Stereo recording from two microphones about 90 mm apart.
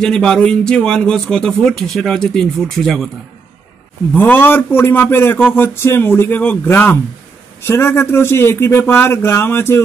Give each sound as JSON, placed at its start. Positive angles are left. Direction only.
{"t": 0.0, "sound": "speech", "side_deg": 5}
{"t": 4.1, "sound": "a man's voice", "side_deg": 20}